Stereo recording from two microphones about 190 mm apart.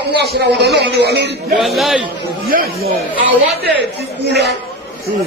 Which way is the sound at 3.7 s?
65° right (ahead or behind).